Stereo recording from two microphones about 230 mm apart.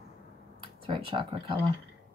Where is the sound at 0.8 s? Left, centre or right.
Right.